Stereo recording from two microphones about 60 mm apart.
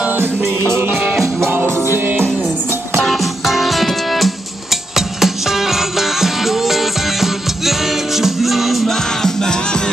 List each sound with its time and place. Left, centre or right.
0.0 s music: right
1.2 s music: right
3.0 s music: centre